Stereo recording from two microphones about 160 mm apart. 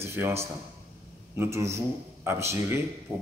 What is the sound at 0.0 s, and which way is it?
A man's voice, 15° right (ahead or behind).